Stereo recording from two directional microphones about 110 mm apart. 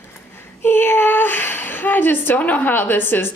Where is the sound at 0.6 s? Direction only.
20° left (ahead or behind).